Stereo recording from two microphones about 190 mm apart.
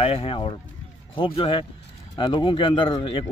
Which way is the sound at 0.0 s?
30° left (ahead or behind).